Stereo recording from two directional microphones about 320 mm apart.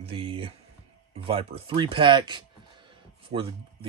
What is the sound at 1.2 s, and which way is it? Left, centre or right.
Speech, centre.